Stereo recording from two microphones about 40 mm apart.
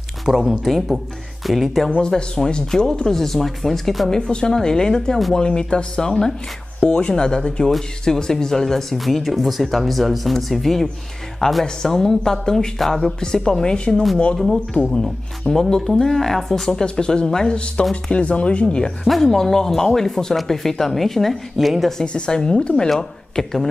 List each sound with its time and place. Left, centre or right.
0.3 s speech: centre
0.7 s speech: centre
2.0 s speech: centre
4.1 s speech: centre
8.9 s speech: centre
15.5 s speech: left
15.9 s speech: centre
16.8 s speech: left
19.0 s speech: centre
22.0 s speech: left
22.9 s speech: centre